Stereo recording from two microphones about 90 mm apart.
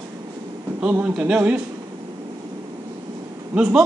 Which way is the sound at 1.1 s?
15° right (ahead or behind).